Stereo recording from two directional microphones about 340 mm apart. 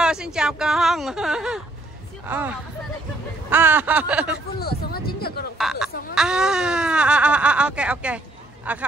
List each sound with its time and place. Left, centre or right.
0.0 s speech: centre
4.6 s speech: left
5.6 s speech: centre